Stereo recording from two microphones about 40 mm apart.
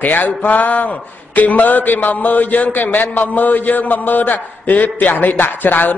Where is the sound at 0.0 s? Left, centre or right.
Left.